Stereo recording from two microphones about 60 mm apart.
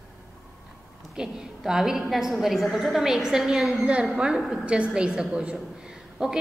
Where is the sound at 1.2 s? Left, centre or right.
Centre.